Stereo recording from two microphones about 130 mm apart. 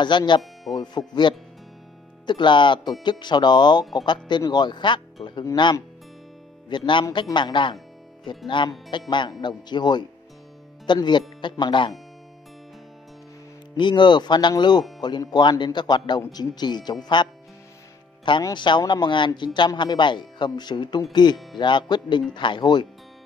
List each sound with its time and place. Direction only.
0.0 s speech: 35° left (ahead or behind)
6.9 s speech: 40° left (ahead or behind)
13.7 s speech: 35° left (ahead or behind)
17.2 s music: 35° left (ahead or behind)
18.4 s speech: 35° left (ahead or behind)